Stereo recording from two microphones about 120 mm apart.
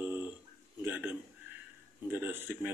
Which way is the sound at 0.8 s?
15° right (ahead or behind).